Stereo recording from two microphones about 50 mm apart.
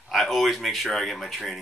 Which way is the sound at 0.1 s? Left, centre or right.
Centre.